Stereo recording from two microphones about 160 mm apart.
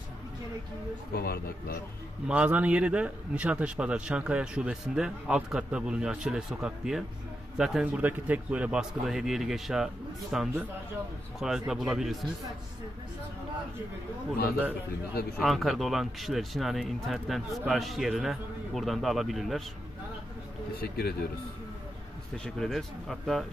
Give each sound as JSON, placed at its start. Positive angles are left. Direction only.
{"t": 1.1, "sound": "speech", "side_deg": 75}
{"t": 2.2, "sound": "a man's voice", "side_deg": -10}
{"t": 15.3, "sound": "speech", "side_deg": 0}
{"t": 20.7, "sound": "speech", "side_deg": 75}
{"t": 22.4, "sound": "speech", "side_deg": 0}